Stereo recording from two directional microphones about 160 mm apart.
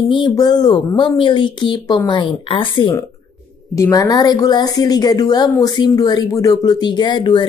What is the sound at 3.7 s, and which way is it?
A woman's voice, 20° left (ahead or behind).